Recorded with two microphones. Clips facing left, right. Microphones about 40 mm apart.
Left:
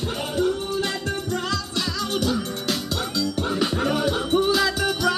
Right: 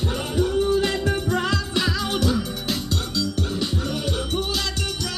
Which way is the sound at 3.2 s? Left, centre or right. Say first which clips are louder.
Left 1 dB; centre.